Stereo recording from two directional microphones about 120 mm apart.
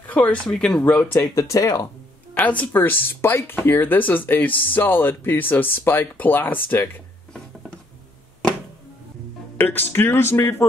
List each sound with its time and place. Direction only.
0.0 s speech: 15° left (ahead or behind)
2.3 s speech: 10° left (ahead or behind)
9.6 s speech: 15° left (ahead or behind)